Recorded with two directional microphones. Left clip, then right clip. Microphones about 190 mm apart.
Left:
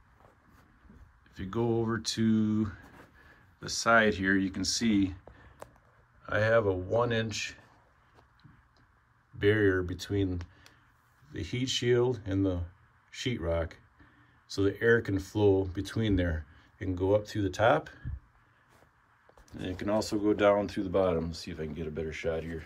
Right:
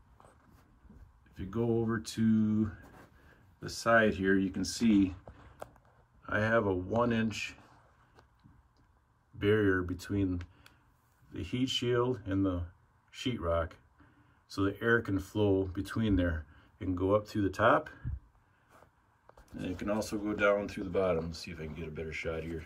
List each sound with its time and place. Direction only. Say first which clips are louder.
1.3 s speech: left 2 dB; 5° left (ahead or behind)
6.2 s speech: left 3 dB; 5° left (ahead or behind)
9.4 s speech: left 2 dB; 5° left (ahead or behind)
19.3 s speech: left 2 dB; centre (ahead or behind)